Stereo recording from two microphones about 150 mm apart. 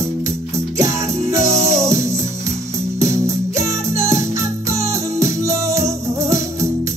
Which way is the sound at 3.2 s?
20° right (ahead or behind).